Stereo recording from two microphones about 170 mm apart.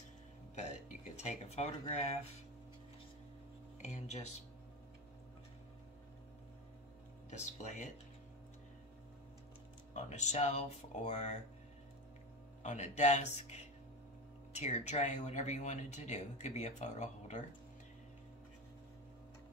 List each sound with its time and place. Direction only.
0.6 s a sound: 40° left (ahead or behind)
3.8 s speech: 40° left (ahead or behind)
7.2 s speech: 45° left (ahead or behind)
9.9 s speech: 40° left (ahead or behind)
12.6 s speech: 45° left (ahead or behind)